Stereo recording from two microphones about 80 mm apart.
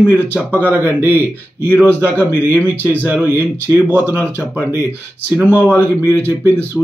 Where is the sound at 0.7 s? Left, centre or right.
Right.